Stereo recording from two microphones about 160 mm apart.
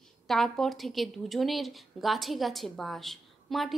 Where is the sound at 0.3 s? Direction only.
Centre (ahead or behind).